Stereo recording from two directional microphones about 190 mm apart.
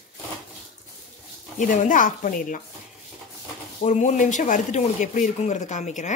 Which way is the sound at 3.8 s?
40° left (ahead or behind).